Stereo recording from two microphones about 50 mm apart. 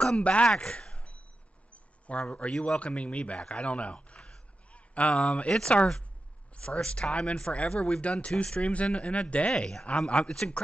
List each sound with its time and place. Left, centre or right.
0.0 s speech: left
1.7 s a sound: left
2.6 s speech: left
9.5 s speech: centre
9.8 s speech: left